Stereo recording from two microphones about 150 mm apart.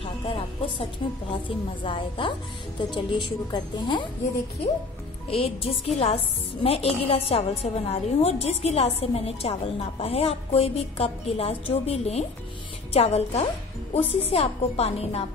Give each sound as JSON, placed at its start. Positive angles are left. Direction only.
{"t": 0.0, "sound": "music", "side_deg": 40}
{"t": 1.9, "sound": "a woman's voice", "side_deg": 35}
{"t": 5.3, "sound": "a woman's voice", "side_deg": 40}